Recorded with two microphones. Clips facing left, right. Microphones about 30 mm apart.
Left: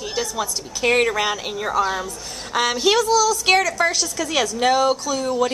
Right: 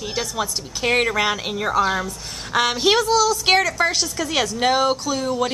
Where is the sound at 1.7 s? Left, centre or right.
Right.